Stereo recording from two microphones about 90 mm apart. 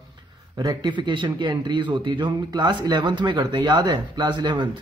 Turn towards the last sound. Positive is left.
turn(degrees=-60)  # may be behind; listen again after turning